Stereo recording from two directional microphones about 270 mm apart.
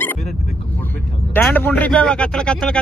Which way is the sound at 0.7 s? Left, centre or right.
Centre.